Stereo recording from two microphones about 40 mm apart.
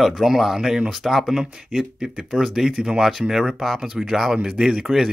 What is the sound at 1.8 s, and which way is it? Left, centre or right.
Speech, centre.